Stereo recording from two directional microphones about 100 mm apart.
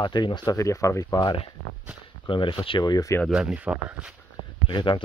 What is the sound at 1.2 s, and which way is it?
Speech, 60° left (ahead or behind).